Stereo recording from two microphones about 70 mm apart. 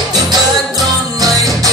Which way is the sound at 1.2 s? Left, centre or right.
Right.